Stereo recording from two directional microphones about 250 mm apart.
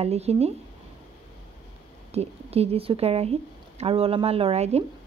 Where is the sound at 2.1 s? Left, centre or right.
Right.